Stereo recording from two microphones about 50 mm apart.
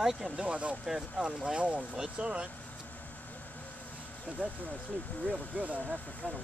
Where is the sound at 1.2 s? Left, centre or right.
Right.